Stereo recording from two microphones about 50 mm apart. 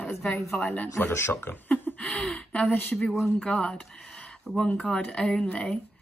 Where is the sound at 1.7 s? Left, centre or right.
Left.